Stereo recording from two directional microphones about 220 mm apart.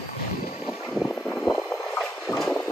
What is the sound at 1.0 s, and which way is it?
Vehicle, centre (ahead or behind).